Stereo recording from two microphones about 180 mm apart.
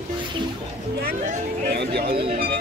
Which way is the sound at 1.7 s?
65° right (ahead or behind).